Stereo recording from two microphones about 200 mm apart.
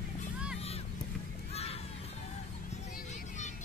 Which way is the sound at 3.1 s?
35° left (ahead or behind).